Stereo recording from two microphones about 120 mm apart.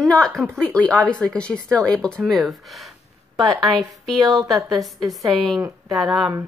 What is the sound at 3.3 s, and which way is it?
Speech, 35° right (ahead or behind).